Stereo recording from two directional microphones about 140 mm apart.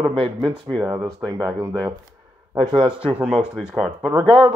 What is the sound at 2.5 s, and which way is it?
Speech, 30° right (ahead or behind).